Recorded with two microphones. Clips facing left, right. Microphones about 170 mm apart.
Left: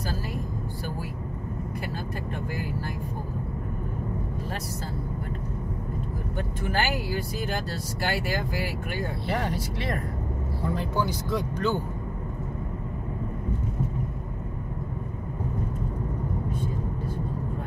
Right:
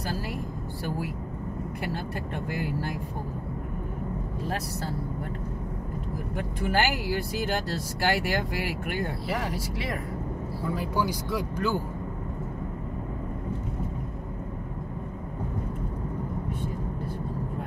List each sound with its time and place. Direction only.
6.6 s speech: 70° right (ahead or behind)
9.3 s speech: centre (ahead or behind)